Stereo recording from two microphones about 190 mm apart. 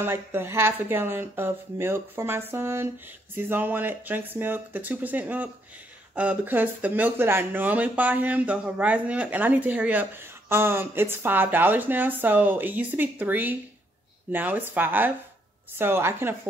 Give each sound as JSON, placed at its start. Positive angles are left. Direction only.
{"t": 0.0, "sound": "speech", "side_deg": -10}